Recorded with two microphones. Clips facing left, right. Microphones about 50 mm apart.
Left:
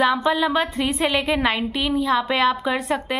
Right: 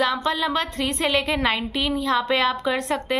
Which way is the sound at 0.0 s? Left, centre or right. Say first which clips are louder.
Left 3 dB; centre.